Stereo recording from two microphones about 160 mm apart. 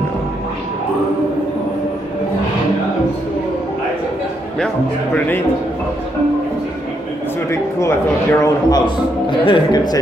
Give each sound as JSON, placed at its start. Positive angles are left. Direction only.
{"t": 7.8, "sound": "a man's voice", "side_deg": 20}